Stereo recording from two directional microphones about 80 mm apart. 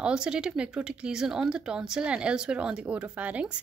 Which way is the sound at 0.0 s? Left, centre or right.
Centre.